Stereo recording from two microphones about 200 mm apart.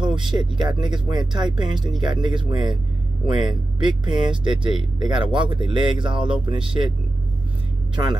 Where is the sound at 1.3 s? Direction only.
Centre (ahead or behind).